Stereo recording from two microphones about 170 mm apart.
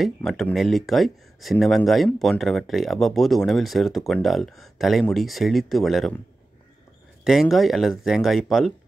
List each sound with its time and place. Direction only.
0.0 s speech: centre (ahead or behind)
7.2 s speech: centre (ahead or behind)